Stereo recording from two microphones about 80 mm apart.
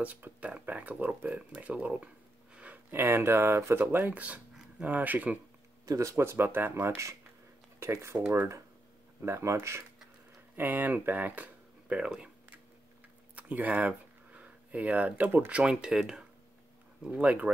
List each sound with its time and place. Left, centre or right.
0.0 s speech: centre
2.5 s a sound: centre
2.9 s speech: right
5.9 s speech: right; by 12.3 s centre
13.4 s speech: centre
15.6 s speech: centre